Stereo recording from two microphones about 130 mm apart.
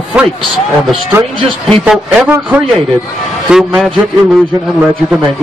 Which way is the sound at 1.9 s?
10° right (ahead or behind).